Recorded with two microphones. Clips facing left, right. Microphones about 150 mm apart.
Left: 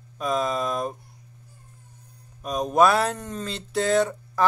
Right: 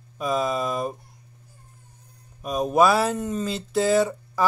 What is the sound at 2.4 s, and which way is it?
Speech, 5° right (ahead or behind).